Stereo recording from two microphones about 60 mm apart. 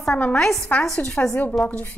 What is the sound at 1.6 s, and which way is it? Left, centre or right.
Speech, left.